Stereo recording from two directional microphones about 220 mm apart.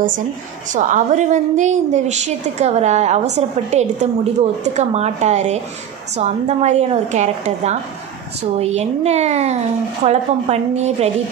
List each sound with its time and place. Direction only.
0.7 s a woman's voice: 35° right (ahead or behind)